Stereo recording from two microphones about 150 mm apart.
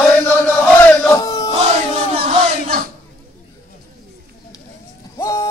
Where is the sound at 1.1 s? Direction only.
25° left (ahead or behind).